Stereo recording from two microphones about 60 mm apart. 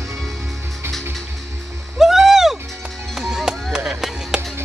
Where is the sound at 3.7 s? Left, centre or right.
Centre.